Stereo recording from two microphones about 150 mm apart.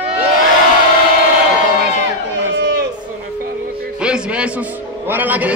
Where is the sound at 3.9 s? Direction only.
5° right (ahead or behind).